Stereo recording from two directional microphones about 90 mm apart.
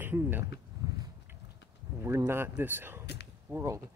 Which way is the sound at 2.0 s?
30° right (ahead or behind).